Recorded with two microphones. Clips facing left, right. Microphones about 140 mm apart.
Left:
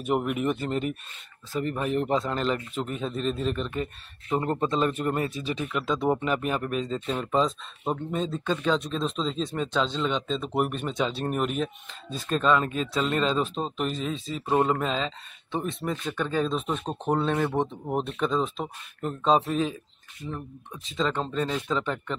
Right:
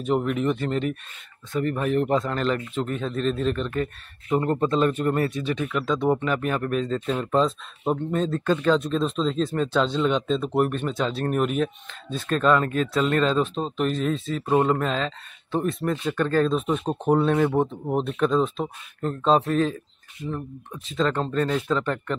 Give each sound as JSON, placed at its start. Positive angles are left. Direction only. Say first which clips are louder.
{"t": 0.0, "sound": "speech", "louder": "right 3 dB", "side_deg": 10}
{"t": 2.0, "sound": "speech", "louder": "right 2 dB", "side_deg": 5}
{"t": 4.4, "sound": "speech", "louder": "right 4 dB", "side_deg": 25}
{"t": 4.6, "sound": "speech", "louder": "right 4 dB", "side_deg": 5}
{"t": 5.4, "sound": "speech", "louder": "right 4 dB", "side_deg": 35}
{"t": 5.7, "sound": "speech", "louder": "right 2 dB", "side_deg": 10}
{"t": 12.9, "sound": "speech", "louder": "right 3 dB", "side_deg": 0}